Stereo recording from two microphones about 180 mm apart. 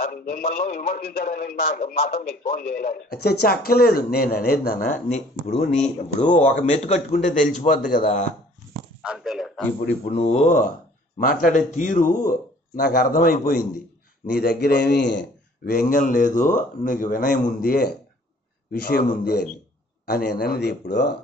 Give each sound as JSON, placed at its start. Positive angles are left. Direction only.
{"t": 0.0, "sound": "a man's voice", "side_deg": 55}
{"t": 6.2, "sound": "a man's voice", "side_deg": 30}
{"t": 9.0, "sound": "speech", "side_deg": -5}
{"t": 10.1, "sound": "a man's voice", "side_deg": 40}
{"t": 15.6, "sound": "a man's voice", "side_deg": 50}